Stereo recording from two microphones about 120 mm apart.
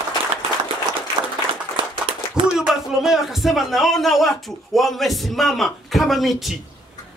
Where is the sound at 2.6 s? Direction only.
Centre (ahead or behind).